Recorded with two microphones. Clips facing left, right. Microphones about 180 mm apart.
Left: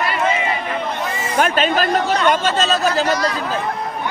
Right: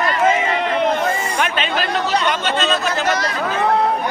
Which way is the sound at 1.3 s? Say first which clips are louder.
Left 4 dB; 45° left (ahead or behind).